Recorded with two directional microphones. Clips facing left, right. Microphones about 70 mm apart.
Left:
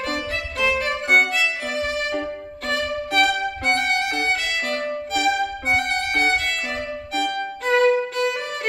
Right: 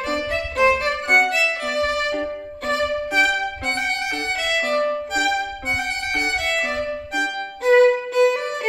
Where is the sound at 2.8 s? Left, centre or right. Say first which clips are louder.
Even; centre.